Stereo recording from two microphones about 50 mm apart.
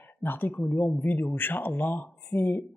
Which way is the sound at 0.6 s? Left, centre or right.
Left.